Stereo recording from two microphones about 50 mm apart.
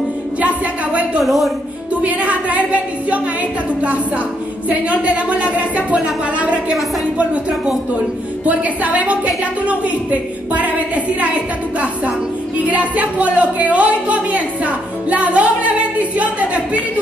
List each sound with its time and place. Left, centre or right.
0.4 s a woman's voice: right
1.2 s a woman's voice: centre
2.0 s a woman's voice: right
4.6 s a woman's voice: right